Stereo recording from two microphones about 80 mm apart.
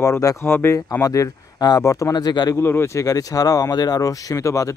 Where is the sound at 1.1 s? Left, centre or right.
Left.